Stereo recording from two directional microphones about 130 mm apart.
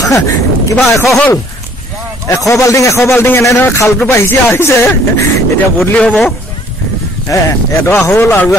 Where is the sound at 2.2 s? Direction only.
25° left (ahead or behind).